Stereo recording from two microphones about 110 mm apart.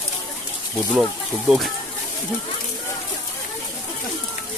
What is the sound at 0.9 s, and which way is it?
Speech, centre (ahead or behind).